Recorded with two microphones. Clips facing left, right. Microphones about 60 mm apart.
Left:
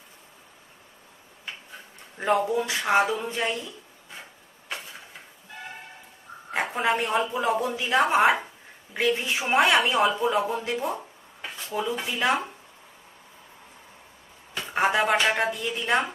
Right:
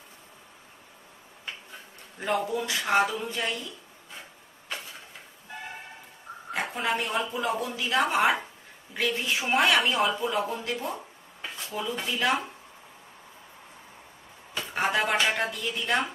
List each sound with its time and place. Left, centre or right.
2.1 s speech: left
6.5 s a woman's voice: left
14.7 s speech: centre